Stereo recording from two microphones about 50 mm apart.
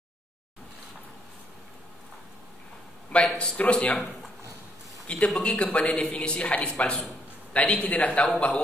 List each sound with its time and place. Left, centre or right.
3.3 s a man's voice: left
5.1 s a man's voice: left